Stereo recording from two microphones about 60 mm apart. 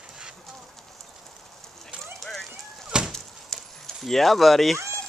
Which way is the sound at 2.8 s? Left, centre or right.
Centre.